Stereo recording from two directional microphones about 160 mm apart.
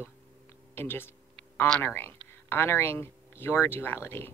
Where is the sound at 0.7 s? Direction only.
15° left (ahead or behind).